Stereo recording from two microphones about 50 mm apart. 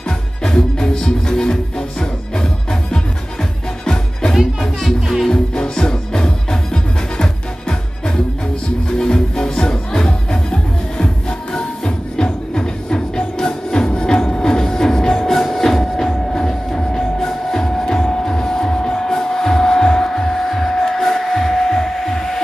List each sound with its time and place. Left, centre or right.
0.4 s music: centre
4.4 s music: centre
5.3 s music: centre
8.9 s music: centre